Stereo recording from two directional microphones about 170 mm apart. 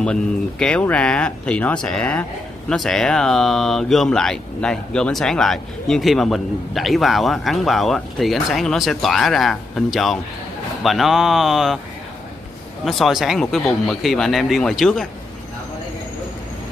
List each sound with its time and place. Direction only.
0.0 s speech: 5° left (ahead or behind)
12.8 s speech: centre (ahead or behind)